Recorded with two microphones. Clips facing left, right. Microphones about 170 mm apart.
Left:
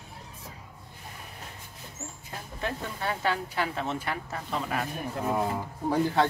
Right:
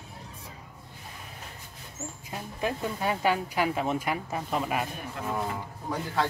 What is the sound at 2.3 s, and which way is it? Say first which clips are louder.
Speech: right 3 dB; 15° right (ahead or behind).